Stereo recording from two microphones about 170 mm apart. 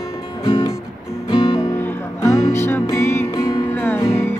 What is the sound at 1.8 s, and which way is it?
Music, 15° left (ahead or behind).